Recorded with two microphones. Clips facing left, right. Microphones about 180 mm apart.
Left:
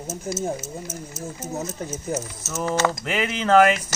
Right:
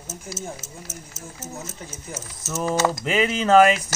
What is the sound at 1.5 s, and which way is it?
Speech, 45° left (ahead or behind).